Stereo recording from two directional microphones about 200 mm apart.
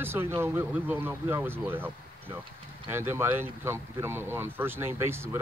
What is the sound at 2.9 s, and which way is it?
Speech, 10° right (ahead or behind).